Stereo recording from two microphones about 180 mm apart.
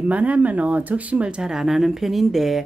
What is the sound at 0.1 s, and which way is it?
Speech, 10° right (ahead or behind).